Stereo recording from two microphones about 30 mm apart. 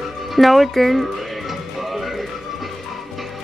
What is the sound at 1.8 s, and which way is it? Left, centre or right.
Music, centre.